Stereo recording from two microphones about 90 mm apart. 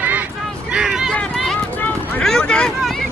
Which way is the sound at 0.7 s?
10° right (ahead or behind).